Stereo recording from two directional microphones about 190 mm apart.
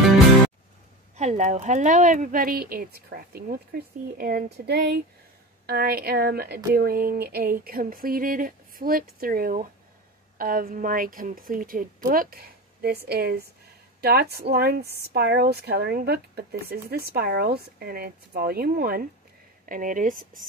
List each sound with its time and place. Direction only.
1.1 s speech: 35° right (ahead or behind)